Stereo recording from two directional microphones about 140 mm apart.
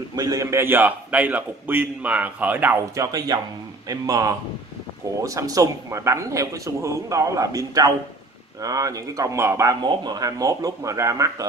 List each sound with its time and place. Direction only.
0.1 s a man's voice: 25° right (ahead or behind)
3.0 s speech: 25° right (ahead or behind)